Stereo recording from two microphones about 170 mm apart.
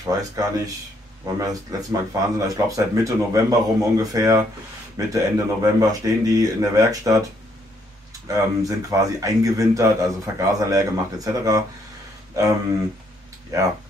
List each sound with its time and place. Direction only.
0.0 s speech: 20° right (ahead or behind)
8.3 s speech: 20° right (ahead or behind)
13.5 s speech: 20° right (ahead or behind)